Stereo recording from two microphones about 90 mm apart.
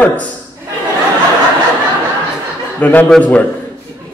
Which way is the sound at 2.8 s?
20° left (ahead or behind).